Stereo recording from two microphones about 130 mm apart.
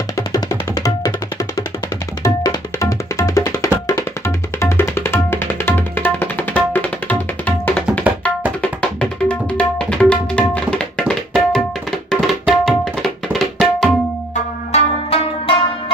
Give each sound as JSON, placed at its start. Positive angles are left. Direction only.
{"t": 0.3, "sound": "music", "side_deg": 25}
{"t": 2.2, "sound": "tabla", "side_deg": 25}
{"t": 14.7, "sound": "music", "side_deg": 50}